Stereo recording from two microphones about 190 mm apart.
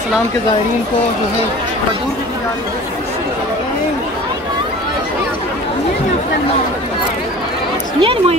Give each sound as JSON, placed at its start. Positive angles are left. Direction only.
{"t": 8.0, "sound": "speech", "side_deg": -30}